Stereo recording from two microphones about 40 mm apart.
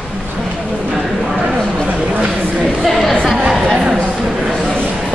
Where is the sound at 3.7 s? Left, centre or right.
Centre.